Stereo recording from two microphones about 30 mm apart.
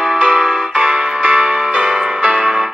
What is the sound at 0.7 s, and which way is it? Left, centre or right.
Music, right.